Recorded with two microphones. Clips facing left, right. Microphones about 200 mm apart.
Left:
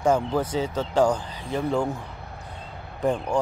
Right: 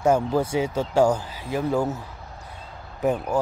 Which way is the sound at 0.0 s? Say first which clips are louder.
Right 2 dB; 10° right (ahead or behind).